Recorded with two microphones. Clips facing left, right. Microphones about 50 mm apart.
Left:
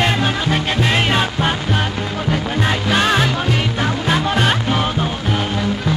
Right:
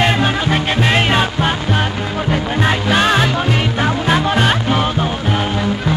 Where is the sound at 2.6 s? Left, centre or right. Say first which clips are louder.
Right 3 dB; right.